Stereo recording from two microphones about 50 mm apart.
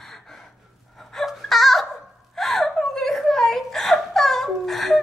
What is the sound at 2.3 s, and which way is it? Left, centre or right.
Whimper, centre.